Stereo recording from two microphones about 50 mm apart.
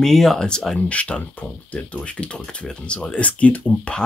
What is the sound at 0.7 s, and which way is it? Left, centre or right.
Speech, left.